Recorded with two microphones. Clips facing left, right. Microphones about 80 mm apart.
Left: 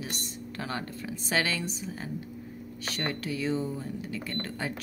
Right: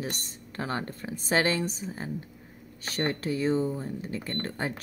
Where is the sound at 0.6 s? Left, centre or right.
Right.